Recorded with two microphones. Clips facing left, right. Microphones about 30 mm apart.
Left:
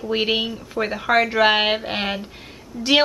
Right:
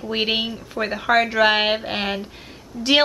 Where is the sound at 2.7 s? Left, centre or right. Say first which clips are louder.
Even; left.